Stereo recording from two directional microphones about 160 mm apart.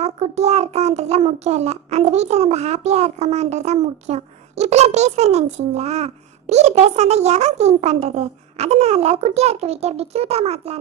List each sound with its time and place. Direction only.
0.0 s a child's voice: 45° right (ahead or behind)